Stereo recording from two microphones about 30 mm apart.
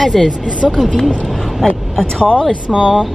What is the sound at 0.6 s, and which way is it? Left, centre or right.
Speech, centre.